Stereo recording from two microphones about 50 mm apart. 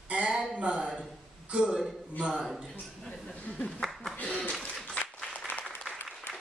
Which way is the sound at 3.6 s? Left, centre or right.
Centre.